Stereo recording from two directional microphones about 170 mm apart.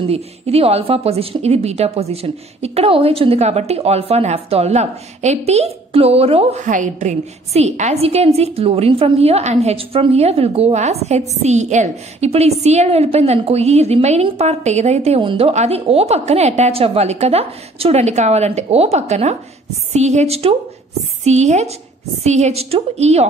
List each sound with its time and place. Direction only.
0.0 s a woman's voice: 35° right (ahead or behind)